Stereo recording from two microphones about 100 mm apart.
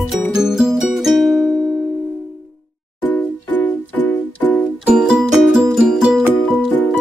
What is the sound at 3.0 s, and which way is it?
Music, 15° left (ahead or behind).